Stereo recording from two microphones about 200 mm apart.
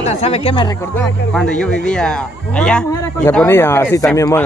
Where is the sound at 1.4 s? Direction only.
5° left (ahead or behind).